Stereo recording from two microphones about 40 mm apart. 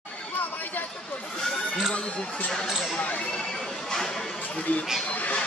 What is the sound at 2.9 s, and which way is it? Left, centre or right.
Speech, left.